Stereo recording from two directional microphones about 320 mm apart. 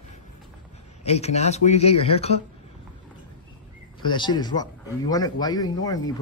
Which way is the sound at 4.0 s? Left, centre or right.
Centre.